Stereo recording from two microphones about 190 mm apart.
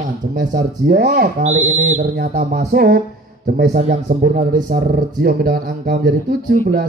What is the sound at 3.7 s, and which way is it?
Speech, 35° right (ahead or behind).